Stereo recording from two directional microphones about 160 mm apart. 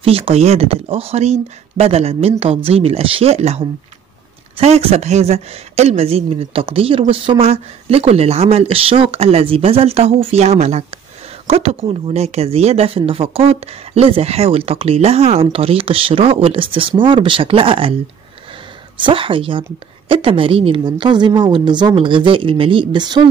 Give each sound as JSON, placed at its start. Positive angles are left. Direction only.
{"t": 0.0, "sound": "speech", "side_deg": -35}
{"t": 18.9, "sound": "speech", "side_deg": -30}